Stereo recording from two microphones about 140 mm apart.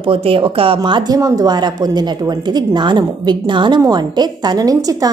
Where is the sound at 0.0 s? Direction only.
40° right (ahead or behind).